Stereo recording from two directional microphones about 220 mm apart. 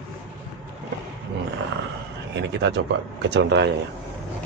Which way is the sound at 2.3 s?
55° right (ahead or behind).